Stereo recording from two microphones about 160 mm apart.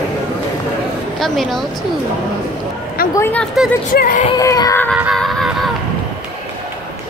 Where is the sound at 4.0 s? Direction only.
60° left (ahead or behind).